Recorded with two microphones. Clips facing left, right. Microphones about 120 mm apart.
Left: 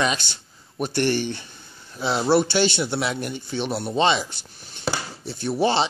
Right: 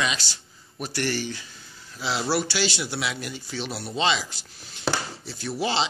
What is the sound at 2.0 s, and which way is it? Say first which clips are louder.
Speech: left 6 dB; 55° left (ahead or behind).